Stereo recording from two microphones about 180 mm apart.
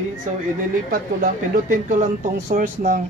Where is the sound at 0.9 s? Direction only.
50° right (ahead or behind).